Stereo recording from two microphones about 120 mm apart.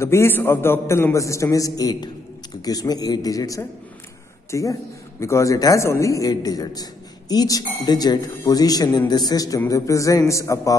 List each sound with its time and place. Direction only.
0.0 s a man's voice: 20° left (ahead or behind)